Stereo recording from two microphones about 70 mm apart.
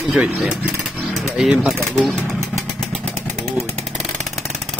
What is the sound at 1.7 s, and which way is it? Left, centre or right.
Vehicle, centre.